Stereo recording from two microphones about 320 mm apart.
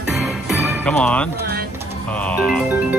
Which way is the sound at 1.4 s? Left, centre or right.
Right.